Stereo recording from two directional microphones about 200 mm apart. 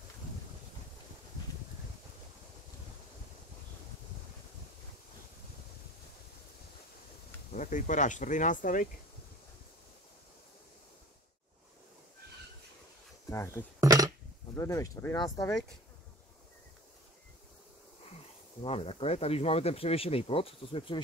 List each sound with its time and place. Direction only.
7.5 s speech: 40° left (ahead or behind)
13.3 s speech: 15° left (ahead or behind)
13.7 s a sound: 15° right (ahead or behind)
14.5 s speech: 15° left (ahead or behind)
18.6 s speech: 30° left (ahead or behind)